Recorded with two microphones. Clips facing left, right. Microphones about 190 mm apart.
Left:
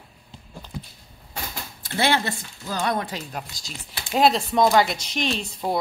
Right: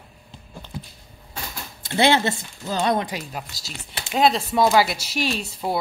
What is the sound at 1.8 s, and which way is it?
Speech, 20° right (ahead or behind).